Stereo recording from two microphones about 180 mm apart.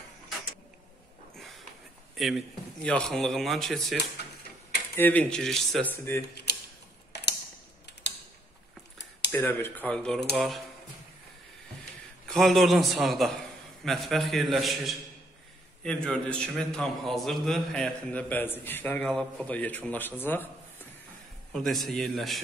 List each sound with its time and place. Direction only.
2.1 s a man's voice: centre (ahead or behind)
7.1 s typing: 70° left (ahead or behind)
9.3 s a man's voice: 10° left (ahead or behind)
12.3 s a man's voice: centre (ahead or behind)
21.5 s a man's voice: centre (ahead or behind)